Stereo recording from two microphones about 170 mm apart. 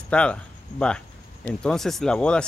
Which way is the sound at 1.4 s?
5° left (ahead or behind).